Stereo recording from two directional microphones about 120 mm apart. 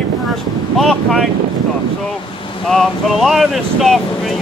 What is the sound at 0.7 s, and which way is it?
Speech, centre (ahead or behind).